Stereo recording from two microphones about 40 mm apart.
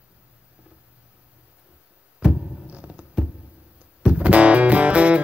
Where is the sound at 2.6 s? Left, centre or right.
Right.